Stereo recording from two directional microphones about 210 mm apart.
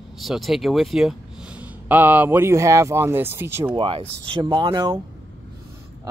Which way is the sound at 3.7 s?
25° right (ahead or behind).